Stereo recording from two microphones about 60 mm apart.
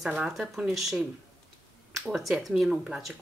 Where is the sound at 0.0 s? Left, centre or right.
Centre.